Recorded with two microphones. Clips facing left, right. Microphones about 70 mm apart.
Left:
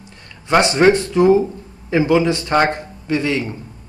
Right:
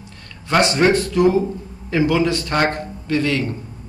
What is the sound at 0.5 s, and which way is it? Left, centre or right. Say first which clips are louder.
A man's voice: left 3 dB; left.